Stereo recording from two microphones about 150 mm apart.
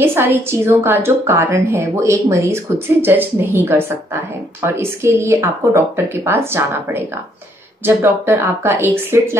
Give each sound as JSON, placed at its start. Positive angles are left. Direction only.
{"t": 0.0, "sound": "a woman's voice", "side_deg": -15}